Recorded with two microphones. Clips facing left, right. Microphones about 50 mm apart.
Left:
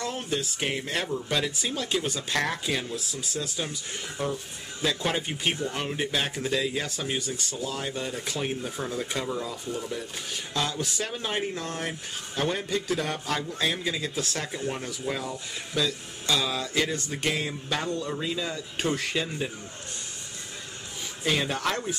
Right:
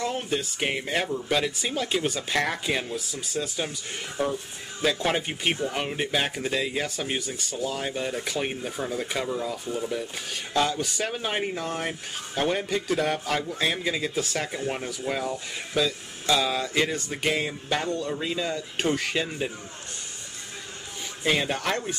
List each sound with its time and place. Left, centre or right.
0.0 s speech: centre
21.2 s speech: centre